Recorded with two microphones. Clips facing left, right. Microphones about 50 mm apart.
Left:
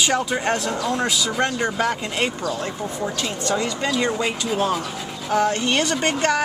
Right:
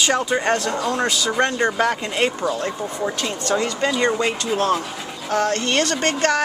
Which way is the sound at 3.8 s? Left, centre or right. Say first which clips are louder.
Right 4 dB; centre.